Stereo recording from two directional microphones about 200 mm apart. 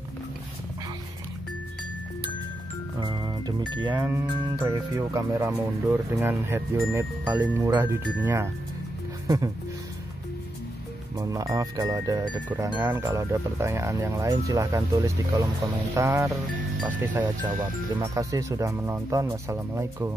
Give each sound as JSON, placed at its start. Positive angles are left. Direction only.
{"t": 3.0, "sound": "speech", "side_deg": -20}
{"t": 11.1, "sound": "speech", "side_deg": -15}
{"t": 17.6, "sound": "speech", "side_deg": -20}